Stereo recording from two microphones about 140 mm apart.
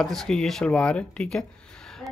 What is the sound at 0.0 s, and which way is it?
Speech, centre (ahead or behind).